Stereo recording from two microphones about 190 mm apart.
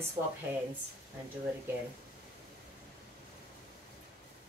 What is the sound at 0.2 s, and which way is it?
Speech, 20° right (ahead or behind).